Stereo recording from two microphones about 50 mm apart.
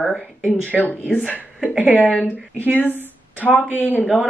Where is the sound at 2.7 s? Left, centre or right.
Left.